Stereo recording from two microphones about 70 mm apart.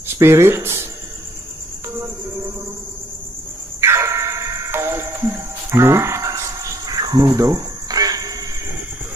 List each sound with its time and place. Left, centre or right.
0.2 s speech: right
3.8 s music: right
6.9 s cricket: right